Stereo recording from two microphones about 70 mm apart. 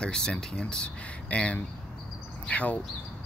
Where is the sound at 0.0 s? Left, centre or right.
Centre.